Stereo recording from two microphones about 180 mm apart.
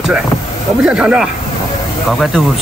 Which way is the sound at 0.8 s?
5° right (ahead or behind).